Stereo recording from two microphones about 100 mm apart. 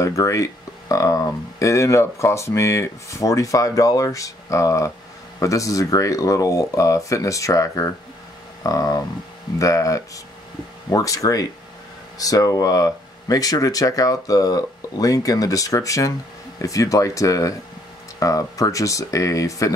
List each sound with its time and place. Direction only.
0.0 s speech: 30° left (ahead or behind)